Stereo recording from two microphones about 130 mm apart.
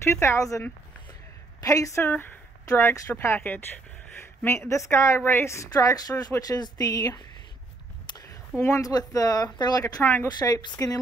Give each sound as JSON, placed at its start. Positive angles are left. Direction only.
{"t": 0.0, "sound": "a woman's voice", "side_deg": 20}
{"t": 1.6, "sound": "a woman's voice", "side_deg": 25}
{"t": 10.0, "sound": "speech", "side_deg": 15}
{"t": 10.5, "sound": "a woman's voice", "side_deg": 30}